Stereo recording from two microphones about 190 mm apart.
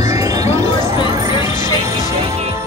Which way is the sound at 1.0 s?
25° left (ahead or behind).